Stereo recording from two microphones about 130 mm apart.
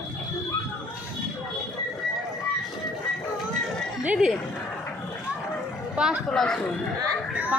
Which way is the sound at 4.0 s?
10° right (ahead or behind).